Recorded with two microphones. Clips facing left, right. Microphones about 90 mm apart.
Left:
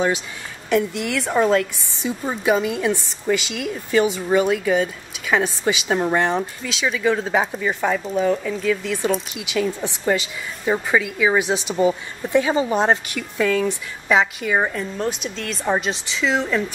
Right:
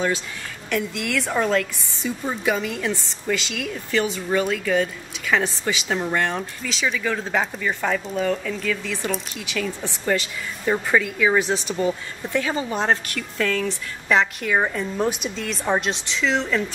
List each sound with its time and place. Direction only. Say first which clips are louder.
0.7 s speech: left 5 dB; 10° left (ahead or behind)
6.6 s speech: left 3 dB; 5° left (ahead or behind)